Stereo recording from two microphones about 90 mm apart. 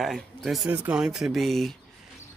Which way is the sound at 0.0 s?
Centre (ahead or behind).